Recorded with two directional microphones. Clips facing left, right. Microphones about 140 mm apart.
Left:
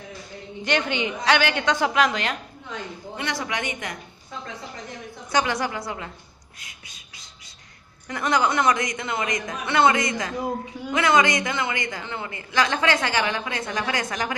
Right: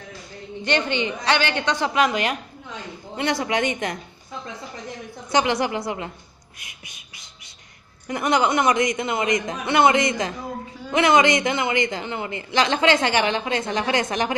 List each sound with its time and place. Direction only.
0.7 s a woman's voice: 5° left (ahead or behind)
3.2 s a man's voice: 25° right (ahead or behind)
5.3 s a man's voice: 20° right (ahead or behind)
8.1 s a man's voice: 20° right (ahead or behind)